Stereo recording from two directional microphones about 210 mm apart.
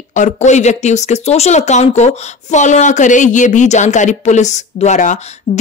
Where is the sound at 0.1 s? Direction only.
35° left (ahead or behind).